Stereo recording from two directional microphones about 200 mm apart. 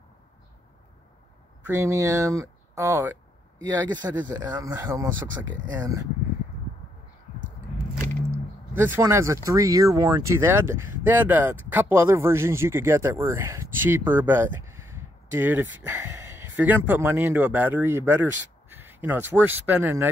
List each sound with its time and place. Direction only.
1.7 s speech: 15° right (ahead or behind)
8.7 s speech: 10° right (ahead or behind)